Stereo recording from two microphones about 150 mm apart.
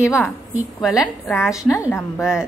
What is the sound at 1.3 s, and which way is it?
Speech, 15° left (ahead or behind).